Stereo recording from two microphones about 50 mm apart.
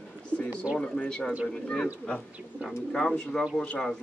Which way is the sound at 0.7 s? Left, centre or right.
Centre.